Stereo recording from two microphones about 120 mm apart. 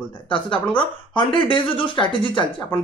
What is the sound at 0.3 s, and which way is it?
Speech, 45° left (ahead or behind).